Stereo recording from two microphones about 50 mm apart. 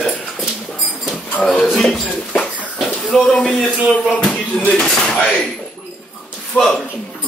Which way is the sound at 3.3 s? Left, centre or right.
Centre.